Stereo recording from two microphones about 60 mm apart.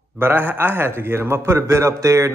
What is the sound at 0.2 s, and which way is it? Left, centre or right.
A man's voice, right.